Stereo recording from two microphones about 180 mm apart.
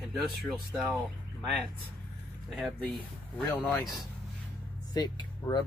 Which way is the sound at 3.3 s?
10° left (ahead or behind).